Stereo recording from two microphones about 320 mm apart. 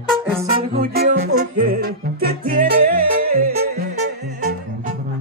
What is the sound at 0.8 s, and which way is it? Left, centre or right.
Music, right.